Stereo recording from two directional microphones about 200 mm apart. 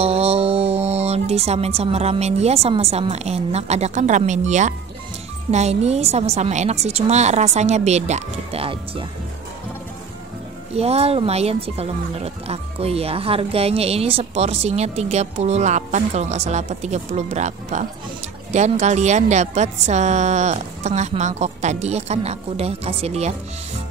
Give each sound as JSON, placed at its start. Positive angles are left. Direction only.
{"t": 0.0, "sound": "speech", "side_deg": -30}
{"t": 10.7, "sound": "speech", "side_deg": -30}